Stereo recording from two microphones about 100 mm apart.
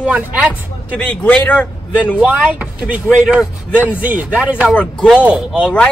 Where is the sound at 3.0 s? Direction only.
Centre (ahead or behind).